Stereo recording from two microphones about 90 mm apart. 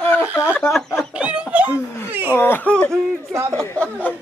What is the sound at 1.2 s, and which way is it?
Laughter, 15° right (ahead or behind).